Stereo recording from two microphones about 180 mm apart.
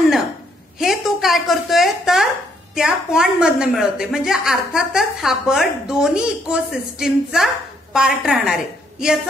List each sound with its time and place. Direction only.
0.7 s a woman's voice: centre (ahead or behind)